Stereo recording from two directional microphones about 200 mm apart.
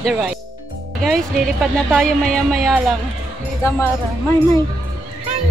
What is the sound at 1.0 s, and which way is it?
A woman's voice, centre (ahead or behind).